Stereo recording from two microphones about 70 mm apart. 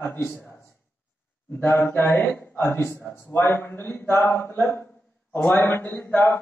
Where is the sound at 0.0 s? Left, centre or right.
Left.